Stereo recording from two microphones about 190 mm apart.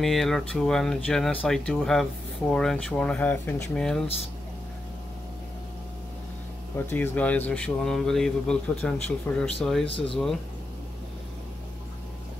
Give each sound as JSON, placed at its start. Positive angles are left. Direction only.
{"t": 0.0, "sound": "speech", "side_deg": 0}
{"t": 6.9, "sound": "speech", "side_deg": 10}